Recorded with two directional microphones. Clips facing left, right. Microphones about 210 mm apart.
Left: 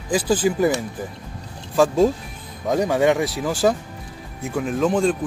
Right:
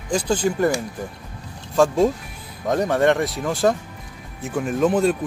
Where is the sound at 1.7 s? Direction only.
5° left (ahead or behind).